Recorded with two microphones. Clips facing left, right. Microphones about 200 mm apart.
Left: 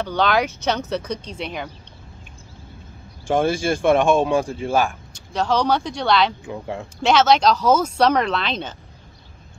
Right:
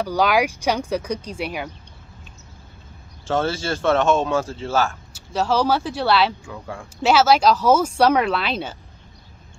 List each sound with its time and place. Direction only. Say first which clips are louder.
0.0 s speech: right 1 dB; 10° right (ahead or behind)
3.3 s speech: left 3 dB; 15° left (ahead or behind)
5.1 s speech: right 1 dB; 5° right (ahead or behind)
6.4 s speech: left 5 dB; 20° left (ahead or behind)
7.0 s speech: even; 5° right (ahead or behind)